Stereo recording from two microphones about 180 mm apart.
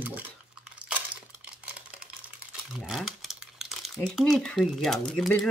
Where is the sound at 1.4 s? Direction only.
5° right (ahead or behind).